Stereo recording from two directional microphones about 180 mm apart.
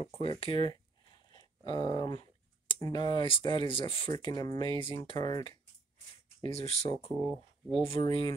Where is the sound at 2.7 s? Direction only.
25° left (ahead or behind).